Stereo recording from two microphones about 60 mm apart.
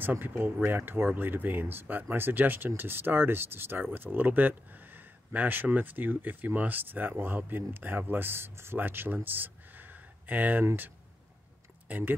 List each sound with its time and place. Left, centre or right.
0.0 s speech: right
11.9 s speech: right